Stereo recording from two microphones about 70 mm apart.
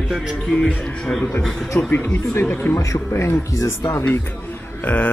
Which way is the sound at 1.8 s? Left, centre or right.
Left.